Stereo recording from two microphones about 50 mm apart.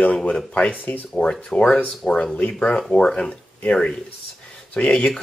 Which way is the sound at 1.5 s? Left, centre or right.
Centre.